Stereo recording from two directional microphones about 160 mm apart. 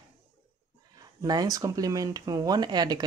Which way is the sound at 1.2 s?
25° right (ahead or behind).